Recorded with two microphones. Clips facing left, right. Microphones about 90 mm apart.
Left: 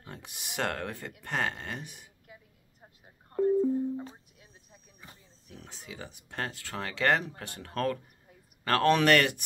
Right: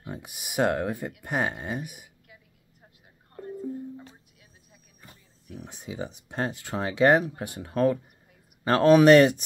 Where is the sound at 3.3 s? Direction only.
30° left (ahead or behind).